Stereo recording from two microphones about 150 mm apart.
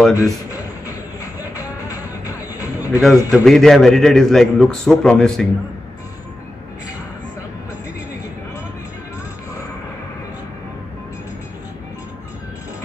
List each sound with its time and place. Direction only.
0.1 s speech: 20° left (ahead or behind)
1.9 s music: 20° left (ahead or behind)
3.2 s a man's voice: 10° right (ahead or behind)
3.4 s a man's voice: centre (ahead or behind)